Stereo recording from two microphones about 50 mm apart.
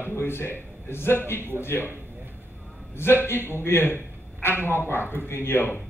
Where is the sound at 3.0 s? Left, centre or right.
Left.